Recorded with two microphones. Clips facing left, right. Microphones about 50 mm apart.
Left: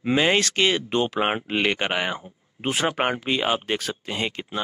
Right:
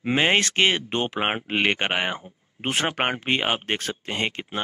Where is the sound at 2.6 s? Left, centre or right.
Right.